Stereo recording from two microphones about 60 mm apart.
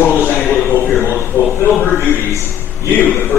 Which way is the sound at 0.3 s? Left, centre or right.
Left.